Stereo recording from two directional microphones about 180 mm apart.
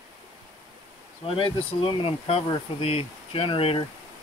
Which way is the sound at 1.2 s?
30° left (ahead or behind).